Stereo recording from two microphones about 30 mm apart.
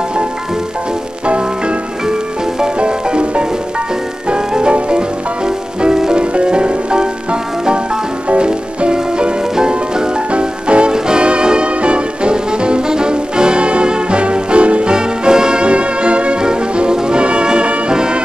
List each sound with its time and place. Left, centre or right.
2.8 s music: right
6.1 s music: right
8.3 s music: right
10.9 s music: right
15.0 s music: right
15.6 s music: right